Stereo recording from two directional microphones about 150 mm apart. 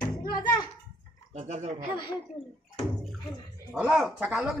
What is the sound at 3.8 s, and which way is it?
Speech, 5° right (ahead or behind).